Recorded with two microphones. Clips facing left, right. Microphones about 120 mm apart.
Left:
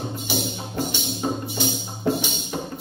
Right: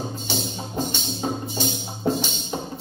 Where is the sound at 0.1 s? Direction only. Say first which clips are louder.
Left 2 dB; 10° left (ahead or behind).